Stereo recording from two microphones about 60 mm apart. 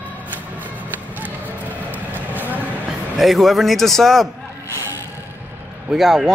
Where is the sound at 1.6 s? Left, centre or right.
Right.